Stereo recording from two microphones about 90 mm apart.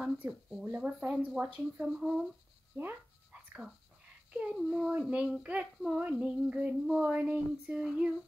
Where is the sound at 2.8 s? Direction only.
20° right (ahead or behind).